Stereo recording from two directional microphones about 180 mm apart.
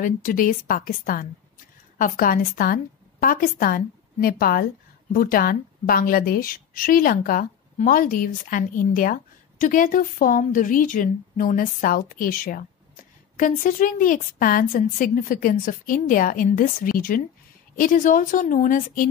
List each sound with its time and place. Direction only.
0.0 s a woman's voice: 50° left (ahead or behind)